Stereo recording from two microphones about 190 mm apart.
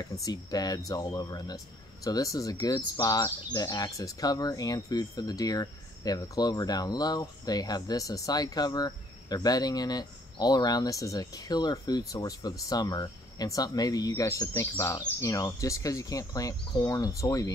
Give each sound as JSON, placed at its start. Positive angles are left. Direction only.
{"t": 0.0, "sound": "speech", "side_deg": 20}